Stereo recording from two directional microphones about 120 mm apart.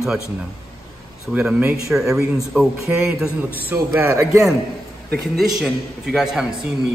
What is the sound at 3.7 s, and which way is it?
Speech, 25° right (ahead or behind).